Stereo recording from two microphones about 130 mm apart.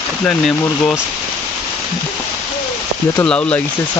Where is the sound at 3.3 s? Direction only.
10° left (ahead or behind).